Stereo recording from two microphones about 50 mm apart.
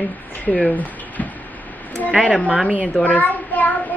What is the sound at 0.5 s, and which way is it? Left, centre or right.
Speech, left.